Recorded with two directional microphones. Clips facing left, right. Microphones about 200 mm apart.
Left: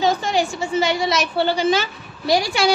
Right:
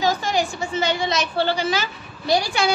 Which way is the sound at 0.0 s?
30° left (ahead or behind).